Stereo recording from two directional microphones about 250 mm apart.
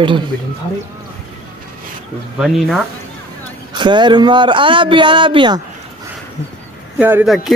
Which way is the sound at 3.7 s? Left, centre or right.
Centre.